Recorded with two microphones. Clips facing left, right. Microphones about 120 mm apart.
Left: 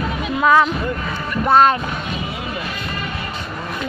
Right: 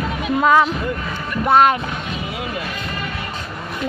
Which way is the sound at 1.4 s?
20° right (ahead or behind).